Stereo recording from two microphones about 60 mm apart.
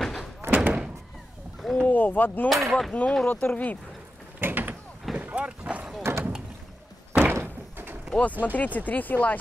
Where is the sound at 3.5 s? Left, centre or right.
Left.